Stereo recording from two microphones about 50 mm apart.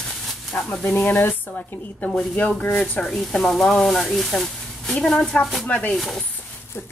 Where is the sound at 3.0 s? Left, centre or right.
Centre.